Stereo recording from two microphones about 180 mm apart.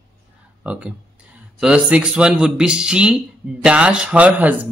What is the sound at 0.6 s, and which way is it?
A man's voice, 5° right (ahead or behind).